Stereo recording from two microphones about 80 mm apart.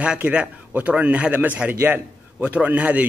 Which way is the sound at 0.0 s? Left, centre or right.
Centre.